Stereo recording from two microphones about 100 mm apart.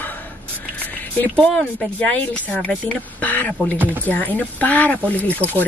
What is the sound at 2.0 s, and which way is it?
A woman's voice, 15° left (ahead or behind).